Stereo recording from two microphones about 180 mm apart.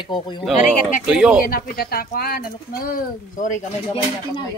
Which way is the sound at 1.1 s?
5° right (ahead or behind).